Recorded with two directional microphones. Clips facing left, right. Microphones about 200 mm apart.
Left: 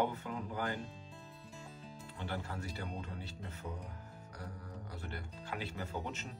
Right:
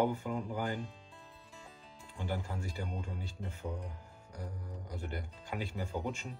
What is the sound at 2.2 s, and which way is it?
Speech, 10° right (ahead or behind).